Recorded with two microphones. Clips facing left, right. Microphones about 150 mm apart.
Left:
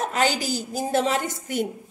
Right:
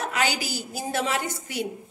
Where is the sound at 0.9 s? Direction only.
30° left (ahead or behind).